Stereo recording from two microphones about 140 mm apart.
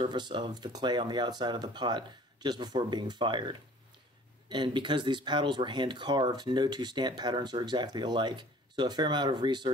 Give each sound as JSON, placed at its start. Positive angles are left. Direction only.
{"t": 0.0, "sound": "speech", "side_deg": -35}